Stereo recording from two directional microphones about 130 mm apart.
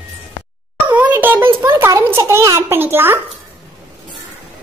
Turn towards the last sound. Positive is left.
turn(degrees=-15)  # may be behind; listen again after turning